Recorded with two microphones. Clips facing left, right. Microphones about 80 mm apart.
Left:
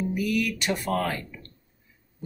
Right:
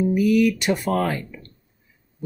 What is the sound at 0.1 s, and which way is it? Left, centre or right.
Speech, centre.